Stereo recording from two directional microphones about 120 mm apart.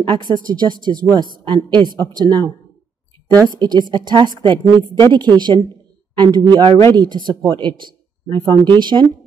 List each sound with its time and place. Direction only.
0.0 s speech: 40° right (ahead or behind)
3.5 s speech: 35° right (ahead or behind)